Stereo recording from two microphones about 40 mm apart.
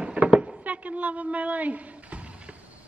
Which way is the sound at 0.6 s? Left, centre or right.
Right.